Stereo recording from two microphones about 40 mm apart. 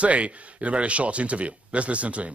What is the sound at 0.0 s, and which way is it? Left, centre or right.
Speech, right.